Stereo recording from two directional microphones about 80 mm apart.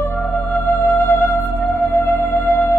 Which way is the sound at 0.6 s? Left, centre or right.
Left.